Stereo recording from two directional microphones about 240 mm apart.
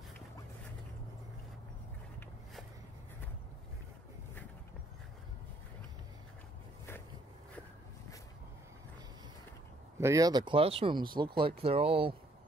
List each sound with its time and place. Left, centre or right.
9.9 s speech: centre